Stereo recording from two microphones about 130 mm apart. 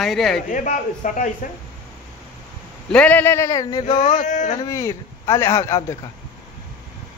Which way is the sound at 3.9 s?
75° left (ahead or behind).